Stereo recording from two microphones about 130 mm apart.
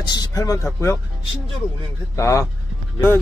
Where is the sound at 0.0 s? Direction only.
30° left (ahead or behind).